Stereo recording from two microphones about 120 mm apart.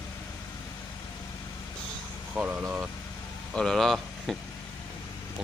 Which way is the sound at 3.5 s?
5° left (ahead or behind).